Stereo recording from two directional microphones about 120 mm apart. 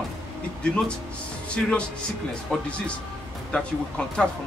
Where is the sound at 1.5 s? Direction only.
10° left (ahead or behind).